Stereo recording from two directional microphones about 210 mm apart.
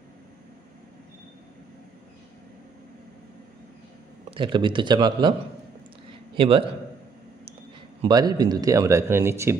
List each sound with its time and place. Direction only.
4.3 s speech: 20° right (ahead or behind)
6.3 s a man's voice: 25° right (ahead or behind)
8.0 s speech: 20° right (ahead or behind)